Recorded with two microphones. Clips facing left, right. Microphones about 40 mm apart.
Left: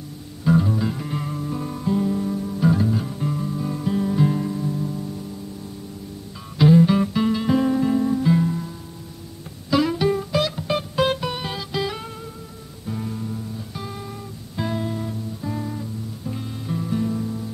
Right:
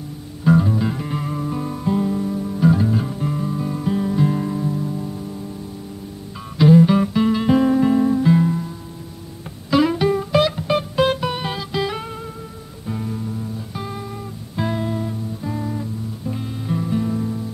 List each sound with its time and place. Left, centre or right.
0.5 s music: centre
4.4 s music: centre
6.6 s music: centre
10.7 s music: centre